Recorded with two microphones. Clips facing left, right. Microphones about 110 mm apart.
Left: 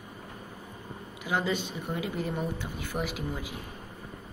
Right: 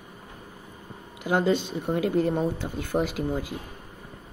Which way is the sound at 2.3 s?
30° right (ahead or behind).